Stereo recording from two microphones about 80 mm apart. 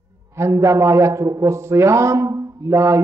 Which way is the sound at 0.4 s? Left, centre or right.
Right.